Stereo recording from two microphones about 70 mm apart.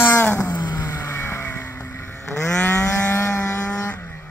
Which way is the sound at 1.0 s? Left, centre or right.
Left.